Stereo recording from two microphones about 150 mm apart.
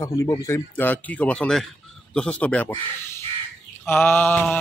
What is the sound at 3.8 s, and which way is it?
Speech, 15° left (ahead or behind).